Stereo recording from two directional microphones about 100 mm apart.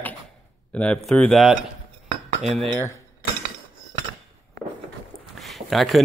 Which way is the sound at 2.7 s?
25° left (ahead or behind).